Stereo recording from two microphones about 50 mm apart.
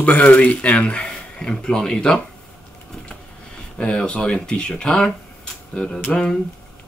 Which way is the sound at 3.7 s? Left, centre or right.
Centre.